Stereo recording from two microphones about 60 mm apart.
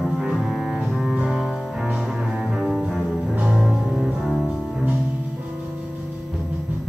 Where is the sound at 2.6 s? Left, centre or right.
Centre.